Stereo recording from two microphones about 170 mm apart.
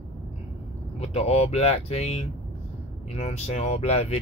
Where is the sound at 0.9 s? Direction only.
40° left (ahead or behind).